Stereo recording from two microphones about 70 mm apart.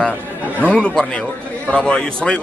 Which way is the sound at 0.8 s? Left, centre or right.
Centre.